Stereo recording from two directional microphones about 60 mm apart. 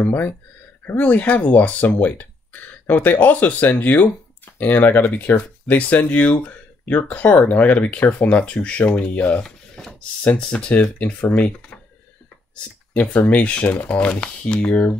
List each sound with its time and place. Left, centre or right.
0.0 s speech: left
12.9 s speech: left